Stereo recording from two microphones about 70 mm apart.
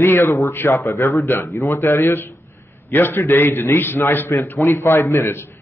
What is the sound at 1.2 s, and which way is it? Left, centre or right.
A man's voice, left.